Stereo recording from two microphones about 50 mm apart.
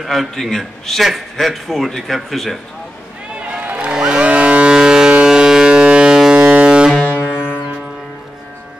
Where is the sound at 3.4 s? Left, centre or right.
Right.